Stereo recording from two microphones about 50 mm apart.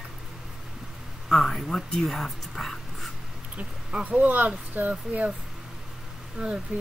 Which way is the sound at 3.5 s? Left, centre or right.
Right.